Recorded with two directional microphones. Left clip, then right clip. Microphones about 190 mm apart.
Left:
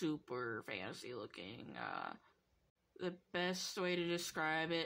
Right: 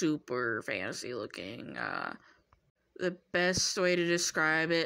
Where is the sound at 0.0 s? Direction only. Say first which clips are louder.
Right 10 dB; 20° right (ahead or behind).